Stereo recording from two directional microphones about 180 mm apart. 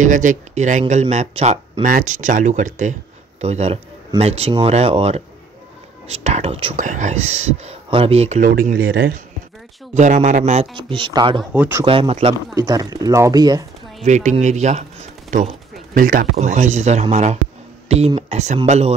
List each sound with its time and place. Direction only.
0.0 s speech: 45° right (ahead or behind)
8.5 s speech: 55° right (ahead or behind)
9.9 s speech: 40° right (ahead or behind)
11.5 s speech: 10° right (ahead or behind)
11.8 s speech: 30° right (ahead or behind)
12.5 s speech: 20° right (ahead or behind)
14.0 s speech: 40° right (ahead or behind)
15.9 s speech: 50° right (ahead or behind); by 18.9 s 35° right (ahead or behind)